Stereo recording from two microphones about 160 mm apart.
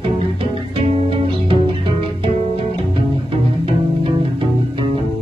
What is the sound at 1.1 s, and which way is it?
Music, 35° right (ahead or behind).